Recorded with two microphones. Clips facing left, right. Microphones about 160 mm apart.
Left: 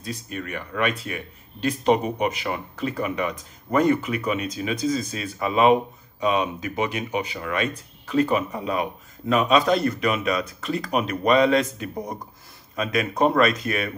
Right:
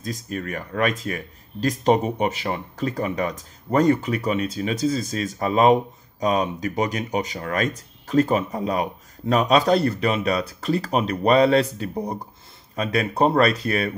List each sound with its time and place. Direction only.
0.0 s speech: 40° right (ahead or behind)